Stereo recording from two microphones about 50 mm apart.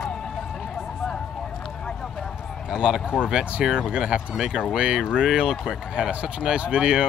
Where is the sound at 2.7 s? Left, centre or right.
Centre.